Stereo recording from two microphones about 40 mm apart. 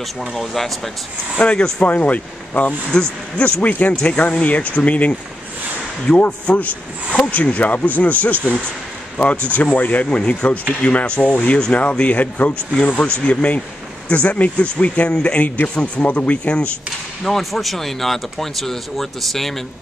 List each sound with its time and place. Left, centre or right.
0.4 s speech: centre
1.9 s speech: left
2.9 s speech: left
3.8 s speech: left
6.1 s speech: centre
6.4 s speech: left
9.5 s speech: left
10.0 s a man's voice: left
15.3 s a man's voice: left
17.2 s speech: centre